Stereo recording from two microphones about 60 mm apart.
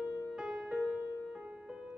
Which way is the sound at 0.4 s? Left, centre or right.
Centre.